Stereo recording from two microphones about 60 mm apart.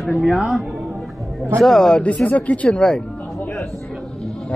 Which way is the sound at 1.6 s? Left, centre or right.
Centre.